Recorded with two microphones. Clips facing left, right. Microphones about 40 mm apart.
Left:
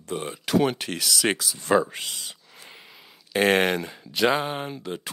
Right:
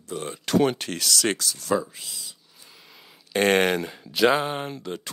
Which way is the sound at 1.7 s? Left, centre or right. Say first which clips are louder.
Left 4 dB; left.